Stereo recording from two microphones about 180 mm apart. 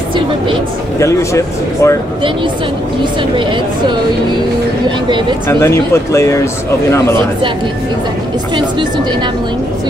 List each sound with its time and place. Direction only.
0.9 s speech: 15° left (ahead or behind)
5.5 s speech: 15° left (ahead or behind)
8.5 s speech: 25° right (ahead or behind)